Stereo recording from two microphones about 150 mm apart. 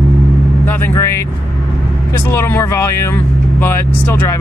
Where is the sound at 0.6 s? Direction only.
15° left (ahead or behind).